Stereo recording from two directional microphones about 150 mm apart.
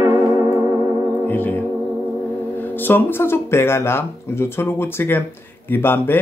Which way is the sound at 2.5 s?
15° left (ahead or behind).